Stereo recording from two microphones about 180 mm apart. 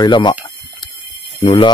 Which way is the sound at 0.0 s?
25° left (ahead or behind).